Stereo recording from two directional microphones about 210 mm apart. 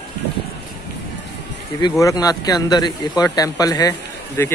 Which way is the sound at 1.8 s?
15° left (ahead or behind).